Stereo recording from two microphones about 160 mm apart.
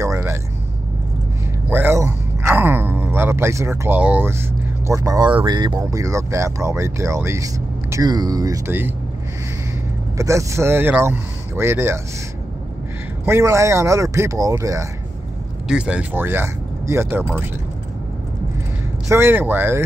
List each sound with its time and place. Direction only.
0.0 s a sound: 15° right (ahead or behind)
1.7 s speech: 15° right (ahead or behind)
10.1 s speech: 20° right (ahead or behind)
13.2 s speech: 15° right (ahead or behind)
15.7 s speech: 5° right (ahead or behind)
19.0 s speech: 15° right (ahead or behind)